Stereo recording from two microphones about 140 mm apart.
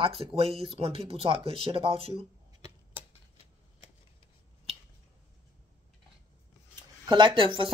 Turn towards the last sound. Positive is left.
turn(degrees=-40)  # may be behind; listen again after turning